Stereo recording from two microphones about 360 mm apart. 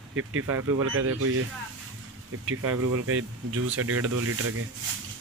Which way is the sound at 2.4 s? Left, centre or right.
Right.